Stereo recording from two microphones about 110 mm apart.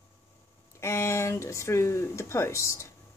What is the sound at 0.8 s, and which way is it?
Speech, 25° left (ahead or behind).